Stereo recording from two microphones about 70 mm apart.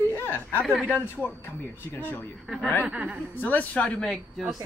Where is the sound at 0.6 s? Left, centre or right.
Centre.